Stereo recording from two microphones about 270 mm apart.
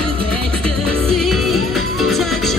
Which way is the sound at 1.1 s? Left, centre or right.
Centre.